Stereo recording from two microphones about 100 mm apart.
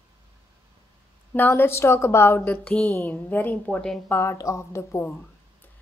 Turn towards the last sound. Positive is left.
turn(degrees=30)  # may be behind; listen again after turning